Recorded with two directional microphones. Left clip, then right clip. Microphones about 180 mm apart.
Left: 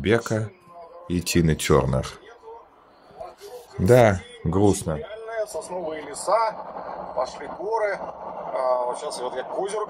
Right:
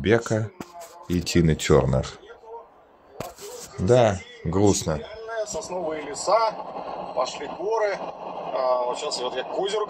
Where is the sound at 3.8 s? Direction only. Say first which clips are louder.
Left 2 dB; 35° left (ahead or behind).